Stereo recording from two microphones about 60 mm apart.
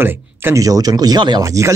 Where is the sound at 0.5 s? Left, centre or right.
Right.